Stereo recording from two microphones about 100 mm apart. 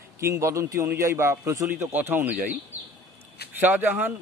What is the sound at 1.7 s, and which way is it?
Speech, 20° right (ahead or behind).